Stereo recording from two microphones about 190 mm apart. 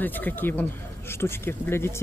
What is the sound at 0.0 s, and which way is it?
Speech, 10° left (ahead or behind).